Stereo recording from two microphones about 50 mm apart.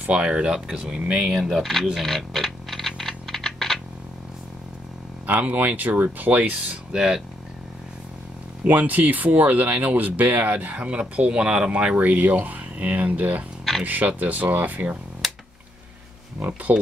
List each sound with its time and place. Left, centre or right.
0.0 s speech: right; by 1.9 s centre
2.0 s a sound: centre
5.2 s speech: right
6.9 s speech: centre
8.6 s speech: right
15.2 s a sound: centre
16.3 s speech: right